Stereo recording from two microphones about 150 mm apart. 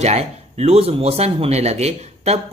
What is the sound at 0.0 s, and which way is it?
Speech, 45° right (ahead or behind).